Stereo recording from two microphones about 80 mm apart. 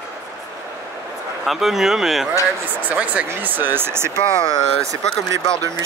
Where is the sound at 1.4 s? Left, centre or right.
Centre.